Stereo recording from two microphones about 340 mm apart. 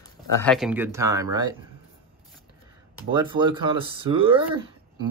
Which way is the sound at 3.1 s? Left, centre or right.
Centre.